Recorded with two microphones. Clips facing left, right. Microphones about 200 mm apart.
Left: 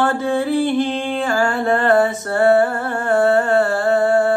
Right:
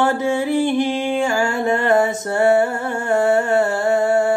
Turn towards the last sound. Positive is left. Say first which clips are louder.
# left 1 dB
turn(degrees=-20)  # may be behind; listen again after turning